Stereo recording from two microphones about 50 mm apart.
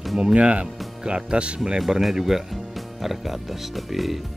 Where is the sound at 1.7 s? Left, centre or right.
Centre.